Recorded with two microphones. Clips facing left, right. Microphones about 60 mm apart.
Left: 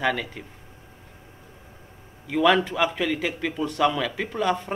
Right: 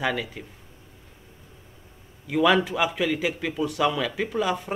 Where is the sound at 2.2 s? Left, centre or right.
Centre.